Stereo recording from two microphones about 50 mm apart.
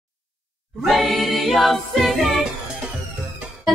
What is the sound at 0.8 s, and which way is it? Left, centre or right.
Music, centre.